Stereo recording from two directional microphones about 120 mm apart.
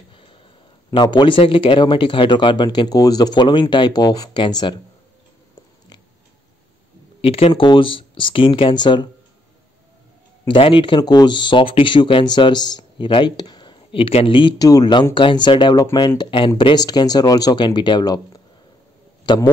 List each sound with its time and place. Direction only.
0.1 s a sound: 45° left (ahead or behind)
0.8 s speech: 35° left (ahead or behind)
7.2 s speech: 55° left (ahead or behind); by 9.1 s 40° left (ahead or behind)
10.5 s speech: 45° left (ahead or behind)
13.9 s speech: 50° left (ahead or behind)